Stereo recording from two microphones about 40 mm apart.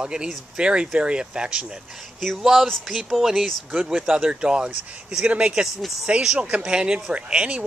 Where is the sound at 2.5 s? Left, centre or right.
Centre.